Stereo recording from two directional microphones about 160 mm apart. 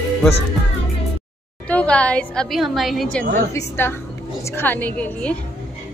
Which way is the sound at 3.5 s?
15° left (ahead or behind).